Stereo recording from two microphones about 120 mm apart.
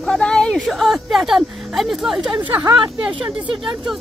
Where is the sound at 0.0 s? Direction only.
5° left (ahead or behind).